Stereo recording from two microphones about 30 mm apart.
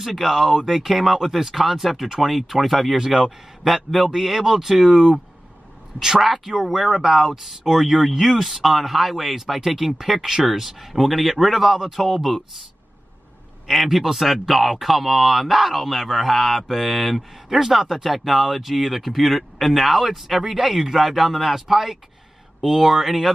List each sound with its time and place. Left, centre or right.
0.0 s speech: centre
3.1 s speech: centre
5.9 s speech: centre
11.7 s speech: centre
13.7 s speech: centre
17.6 s speech: centre
20.4 s speech: centre